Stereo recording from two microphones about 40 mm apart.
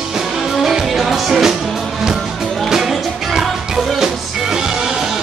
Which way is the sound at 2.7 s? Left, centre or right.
Centre.